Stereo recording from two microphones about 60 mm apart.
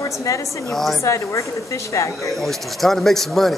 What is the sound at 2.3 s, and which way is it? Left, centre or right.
A woman's voice, centre.